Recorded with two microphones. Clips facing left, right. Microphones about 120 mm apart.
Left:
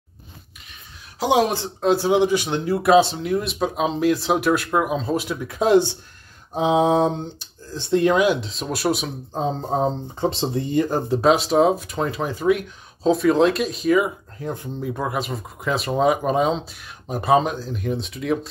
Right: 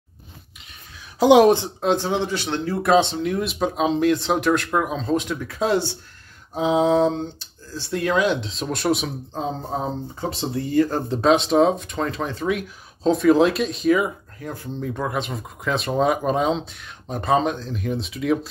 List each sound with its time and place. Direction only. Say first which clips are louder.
1.8 s speech: left 4 dB; 5° left (ahead or behind)
8.3 s speech: left 2 dB; centre (ahead or behind)
9.4 s speech: left 5 dB; 25° left (ahead or behind)
11.1 s speech: even; 5° left (ahead or behind)
14.4 s speech: left 4 dB; 20° left (ahead or behind)
14.8 s speech: right 1 dB; 5° left (ahead or behind)